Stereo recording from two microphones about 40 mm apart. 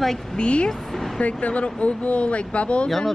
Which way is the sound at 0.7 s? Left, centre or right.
Centre.